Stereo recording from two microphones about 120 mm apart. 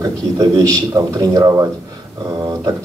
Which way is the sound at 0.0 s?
30° right (ahead or behind).